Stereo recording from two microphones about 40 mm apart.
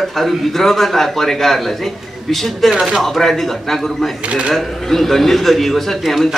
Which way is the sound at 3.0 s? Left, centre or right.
Centre.